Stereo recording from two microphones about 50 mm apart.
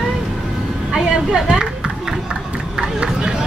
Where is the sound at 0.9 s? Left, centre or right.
Centre.